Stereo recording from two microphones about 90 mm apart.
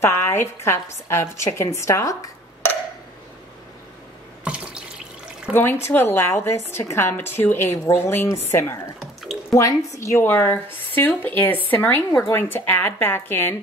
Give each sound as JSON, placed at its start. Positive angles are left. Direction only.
{"t": 0.0, "sound": "a woman's voice", "side_deg": 30}
{"t": 4.5, "sound": "water", "side_deg": -10}
{"t": 5.5, "sound": "a woman's voice", "side_deg": 25}
{"t": 9.0, "sound": "drip", "side_deg": 0}
{"t": 9.5, "sound": "a woman's voice", "side_deg": 40}